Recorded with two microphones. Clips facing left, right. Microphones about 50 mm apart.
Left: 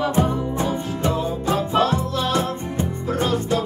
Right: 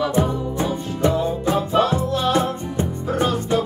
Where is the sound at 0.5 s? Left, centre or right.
Right.